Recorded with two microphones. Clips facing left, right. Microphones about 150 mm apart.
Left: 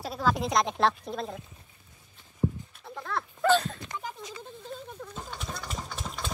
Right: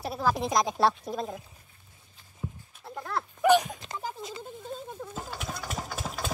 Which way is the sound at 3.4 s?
15° right (ahead or behind).